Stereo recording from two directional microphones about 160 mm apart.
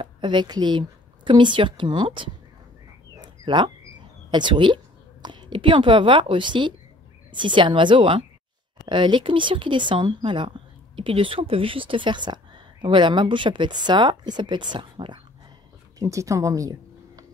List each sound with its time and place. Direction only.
0.0 s a woman's voice: 30° right (ahead or behind)
3.2 s a sound: 30° right (ahead or behind)
4.3 s a woman's voice: 30° right (ahead or behind)